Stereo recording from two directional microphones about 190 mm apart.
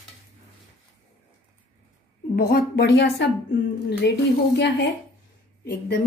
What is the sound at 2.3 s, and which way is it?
A woman's voice, 55° left (ahead or behind).